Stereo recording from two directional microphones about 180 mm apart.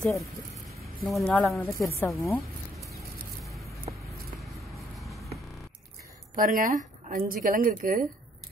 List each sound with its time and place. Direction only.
0.0 s speech: centre (ahead or behind)
2.0 s speech: 15° left (ahead or behind)
4.9 s a sound: centre (ahead or behind)
6.3 s a woman's voice: 50° right (ahead or behind)